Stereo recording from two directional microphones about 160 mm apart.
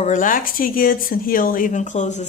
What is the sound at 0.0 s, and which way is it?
Speech, 55° left (ahead or behind).